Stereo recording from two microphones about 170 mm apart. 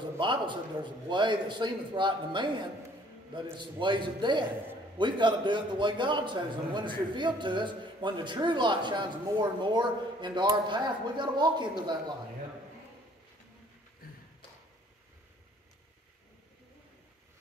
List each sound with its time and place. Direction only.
0.2 s a man's voice: 30° right (ahead or behind)